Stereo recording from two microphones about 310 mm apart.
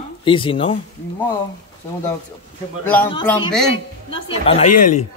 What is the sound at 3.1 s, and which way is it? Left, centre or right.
A man's voice, centre.